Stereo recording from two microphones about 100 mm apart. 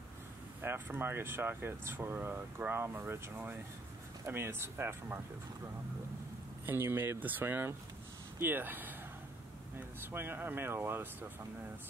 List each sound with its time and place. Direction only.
0.6 s speech: 20° right (ahead or behind)
6.6 s speech: 25° right (ahead or behind)